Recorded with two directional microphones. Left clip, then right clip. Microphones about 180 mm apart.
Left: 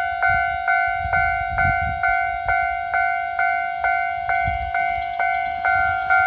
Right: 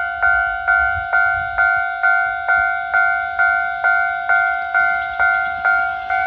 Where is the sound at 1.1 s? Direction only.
25° left (ahead or behind).